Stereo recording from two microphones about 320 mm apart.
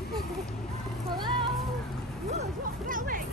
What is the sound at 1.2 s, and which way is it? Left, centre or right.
Speech, centre.